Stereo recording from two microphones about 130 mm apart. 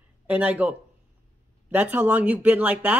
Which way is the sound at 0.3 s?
10° right (ahead or behind).